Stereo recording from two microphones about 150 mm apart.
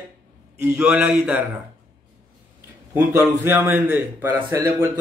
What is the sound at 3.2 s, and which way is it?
A man's voice, 15° right (ahead or behind).